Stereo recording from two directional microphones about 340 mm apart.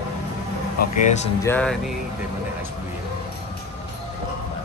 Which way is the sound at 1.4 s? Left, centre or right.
Centre.